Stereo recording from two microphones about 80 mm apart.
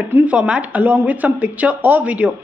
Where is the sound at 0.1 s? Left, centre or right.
Centre.